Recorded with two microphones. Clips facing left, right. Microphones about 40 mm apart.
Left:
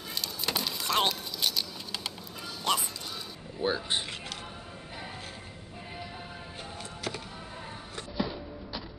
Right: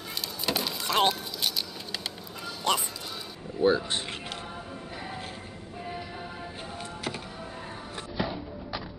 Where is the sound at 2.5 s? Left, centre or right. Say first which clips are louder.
Right 2 dB; centre.